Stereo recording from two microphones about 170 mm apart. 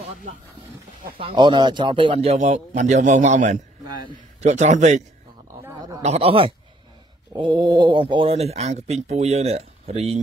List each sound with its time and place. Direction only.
1.1 s speech: 30° right (ahead or behind); by 3.5 s 45° right (ahead or behind)
3.8 s a man's voice: 25° right (ahead or behind)
4.4 s a man's voice: 45° right (ahead or behind)
6.0 s speech: 35° right (ahead or behind)